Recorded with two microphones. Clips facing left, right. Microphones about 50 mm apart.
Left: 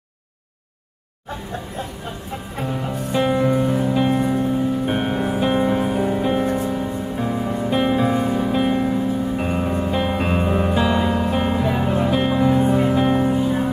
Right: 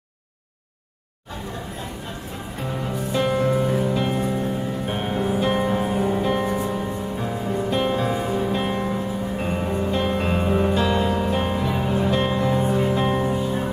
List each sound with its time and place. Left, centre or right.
3.1 s music: centre
4.8 s music: left
5.5 s music: centre
7.2 s music: centre
9.4 s music: centre